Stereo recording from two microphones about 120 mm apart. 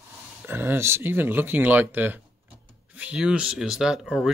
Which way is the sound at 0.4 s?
20° right (ahead or behind).